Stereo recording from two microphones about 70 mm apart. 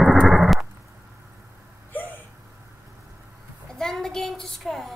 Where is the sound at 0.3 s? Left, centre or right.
Centre.